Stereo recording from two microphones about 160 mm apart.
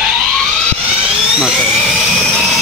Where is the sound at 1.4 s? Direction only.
Centre (ahead or behind).